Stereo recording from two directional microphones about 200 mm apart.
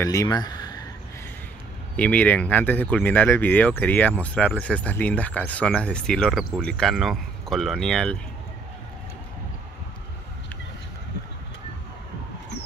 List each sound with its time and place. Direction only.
0.0 s speech: 15° left (ahead or behind)
2.0 s speech: 5° left (ahead or behind)